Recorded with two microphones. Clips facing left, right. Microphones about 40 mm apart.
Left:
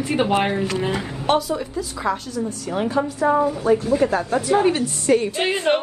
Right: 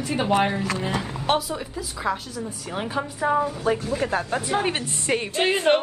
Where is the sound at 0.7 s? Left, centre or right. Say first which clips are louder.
Left 4 dB; left.